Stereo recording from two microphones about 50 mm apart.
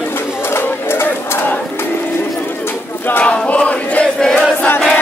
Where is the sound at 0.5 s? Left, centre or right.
Left.